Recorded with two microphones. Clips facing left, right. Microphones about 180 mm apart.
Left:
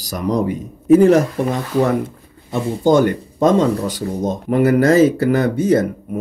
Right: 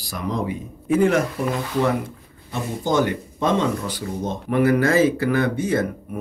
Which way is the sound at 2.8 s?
50° left (ahead or behind).